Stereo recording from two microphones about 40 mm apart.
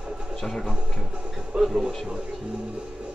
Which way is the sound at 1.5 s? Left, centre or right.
Right.